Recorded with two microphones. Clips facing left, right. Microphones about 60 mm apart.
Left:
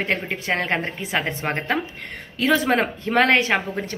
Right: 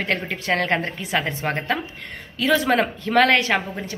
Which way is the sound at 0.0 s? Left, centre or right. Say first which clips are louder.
Even; left.